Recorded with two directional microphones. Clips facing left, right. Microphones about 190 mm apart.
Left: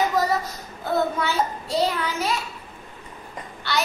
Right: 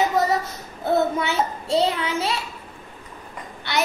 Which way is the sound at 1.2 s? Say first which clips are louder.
Even; 25° right (ahead or behind).